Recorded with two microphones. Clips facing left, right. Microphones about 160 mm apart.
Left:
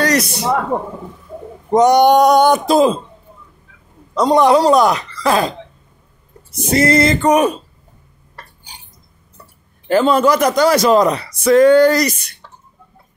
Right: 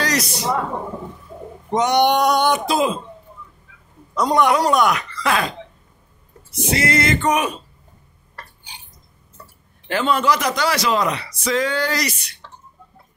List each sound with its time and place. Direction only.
0.0 s a man's voice: 60° left (ahead or behind)
1.7 s a man's voice: 40° left (ahead or behind)
4.1 s speech: 30° left (ahead or behind)
6.5 s speech: 40° left (ahead or behind)
9.8 s a man's voice: 40° left (ahead or behind)